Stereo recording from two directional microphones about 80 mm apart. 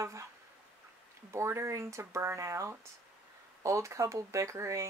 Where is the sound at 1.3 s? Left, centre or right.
Right.